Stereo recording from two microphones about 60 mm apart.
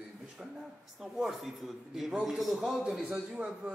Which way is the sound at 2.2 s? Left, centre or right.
Centre.